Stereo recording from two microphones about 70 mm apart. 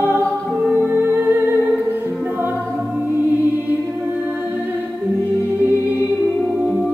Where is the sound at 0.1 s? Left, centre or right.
Left.